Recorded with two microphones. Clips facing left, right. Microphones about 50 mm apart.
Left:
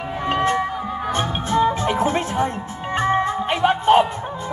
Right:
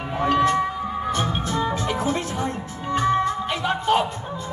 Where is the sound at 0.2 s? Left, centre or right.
Left.